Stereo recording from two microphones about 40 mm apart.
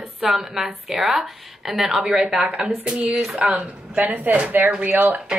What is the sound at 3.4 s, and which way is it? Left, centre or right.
A woman's voice, right.